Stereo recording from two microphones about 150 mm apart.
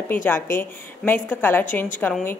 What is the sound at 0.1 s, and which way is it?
A woman's voice, 15° left (ahead or behind).